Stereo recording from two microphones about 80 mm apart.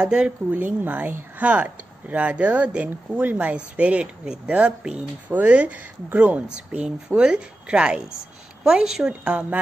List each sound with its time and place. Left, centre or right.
0.0 s speech: centre